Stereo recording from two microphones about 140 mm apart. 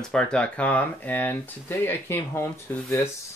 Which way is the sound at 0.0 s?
5° left (ahead or behind).